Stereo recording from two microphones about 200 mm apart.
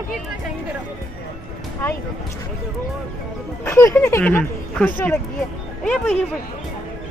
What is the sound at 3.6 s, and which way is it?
Speech, 10° left (ahead or behind).